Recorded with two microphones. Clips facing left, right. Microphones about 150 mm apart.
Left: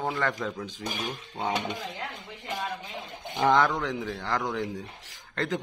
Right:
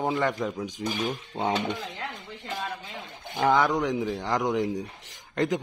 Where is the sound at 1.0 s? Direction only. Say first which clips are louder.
Right 4 dB; 25° right (ahead or behind).